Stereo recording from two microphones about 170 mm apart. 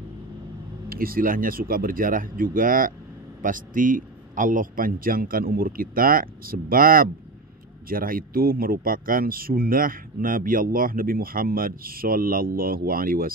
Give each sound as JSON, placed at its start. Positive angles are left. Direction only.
{"t": 0.8, "sound": "speech", "side_deg": -60}